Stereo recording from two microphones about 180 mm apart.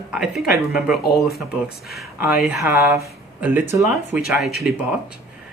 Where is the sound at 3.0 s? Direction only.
15° right (ahead or behind).